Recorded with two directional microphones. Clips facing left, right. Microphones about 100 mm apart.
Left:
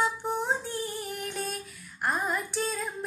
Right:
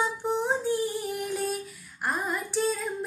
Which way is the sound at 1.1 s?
5° right (ahead or behind).